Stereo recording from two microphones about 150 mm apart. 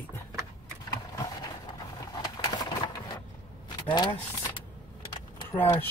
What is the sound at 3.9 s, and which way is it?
Speech, 35° left (ahead or behind).